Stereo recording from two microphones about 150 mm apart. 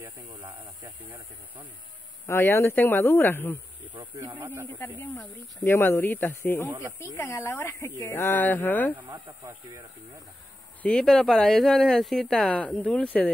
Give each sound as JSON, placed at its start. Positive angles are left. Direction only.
{"t": 2.2, "sound": "speech", "side_deg": 15}
{"t": 4.2, "sound": "speech", "side_deg": -10}
{"t": 4.7, "sound": "speech", "side_deg": 10}
{"t": 10.8, "sound": "speech", "side_deg": 5}